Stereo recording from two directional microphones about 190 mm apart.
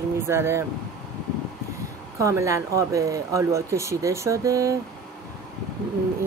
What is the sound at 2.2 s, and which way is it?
Speech, 15° right (ahead or behind).